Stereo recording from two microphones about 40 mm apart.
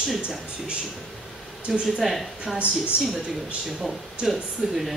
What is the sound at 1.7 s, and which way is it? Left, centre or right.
Speech, centre.